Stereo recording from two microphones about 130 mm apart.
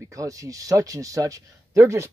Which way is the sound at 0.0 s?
25° right (ahead or behind).